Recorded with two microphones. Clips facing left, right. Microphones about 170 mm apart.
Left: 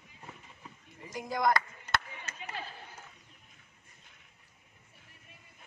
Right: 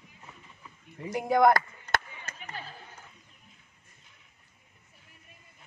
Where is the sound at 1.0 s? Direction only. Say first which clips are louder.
Right 9 dB; 65° right (ahead or behind).